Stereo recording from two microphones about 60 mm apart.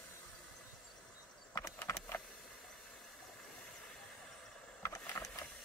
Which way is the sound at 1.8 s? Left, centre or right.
Left.